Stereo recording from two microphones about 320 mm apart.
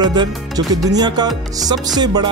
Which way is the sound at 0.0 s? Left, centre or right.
Centre.